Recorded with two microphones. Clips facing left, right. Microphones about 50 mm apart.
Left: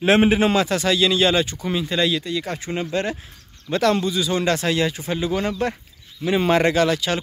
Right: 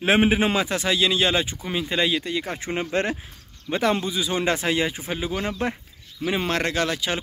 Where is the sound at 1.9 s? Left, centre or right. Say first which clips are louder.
Even; right.